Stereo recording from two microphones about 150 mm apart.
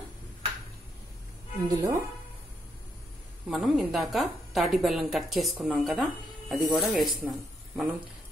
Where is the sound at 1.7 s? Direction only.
20° right (ahead or behind).